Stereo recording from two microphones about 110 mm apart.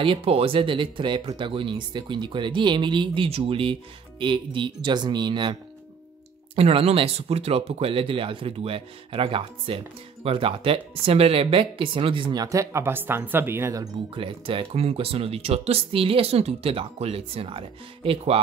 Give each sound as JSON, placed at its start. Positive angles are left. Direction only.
{"t": 0.0, "sound": "speech", "side_deg": -55}
{"t": 6.5, "sound": "speech", "side_deg": -60}
{"t": 14.1, "sound": "speech", "side_deg": -55}